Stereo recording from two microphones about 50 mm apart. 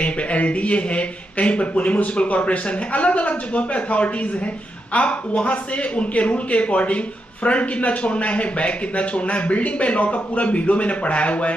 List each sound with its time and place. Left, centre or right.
0.0 s a man's voice: left